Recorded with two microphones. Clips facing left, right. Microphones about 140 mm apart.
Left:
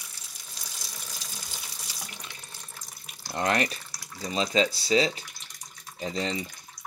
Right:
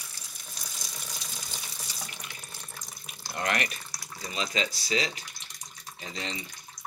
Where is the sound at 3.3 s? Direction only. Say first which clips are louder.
Left 4 dB; 30° left (ahead or behind).